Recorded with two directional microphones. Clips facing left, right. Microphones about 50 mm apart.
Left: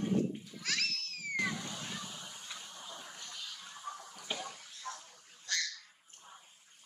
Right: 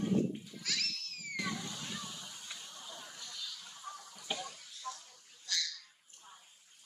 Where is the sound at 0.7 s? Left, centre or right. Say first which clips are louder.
Left 3 dB; left.